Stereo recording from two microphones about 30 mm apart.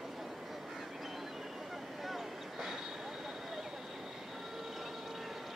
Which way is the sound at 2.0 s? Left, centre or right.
Centre.